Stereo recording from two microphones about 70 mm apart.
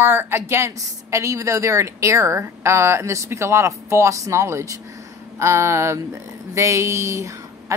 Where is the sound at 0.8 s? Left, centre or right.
Right.